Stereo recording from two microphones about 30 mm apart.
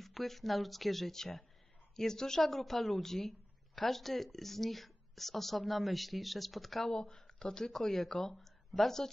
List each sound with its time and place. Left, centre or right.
0.0 s speech: centre
6.9 s speech: left
7.7 s speech: centre